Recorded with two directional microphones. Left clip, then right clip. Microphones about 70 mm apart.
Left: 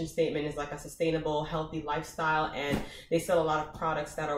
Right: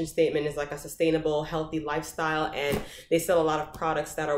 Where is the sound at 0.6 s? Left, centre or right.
Right.